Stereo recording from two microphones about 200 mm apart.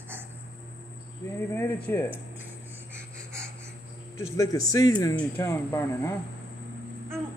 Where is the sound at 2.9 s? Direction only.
10° right (ahead or behind).